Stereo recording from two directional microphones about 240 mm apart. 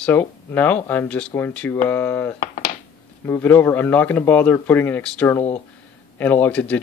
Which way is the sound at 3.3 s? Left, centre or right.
Centre.